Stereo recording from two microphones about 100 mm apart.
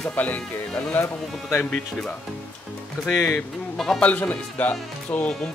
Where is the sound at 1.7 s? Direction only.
10° left (ahead or behind).